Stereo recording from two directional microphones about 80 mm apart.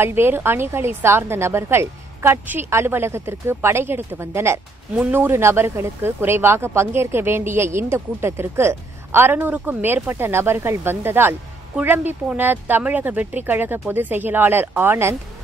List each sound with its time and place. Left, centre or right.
0.0 s a woman's voice: right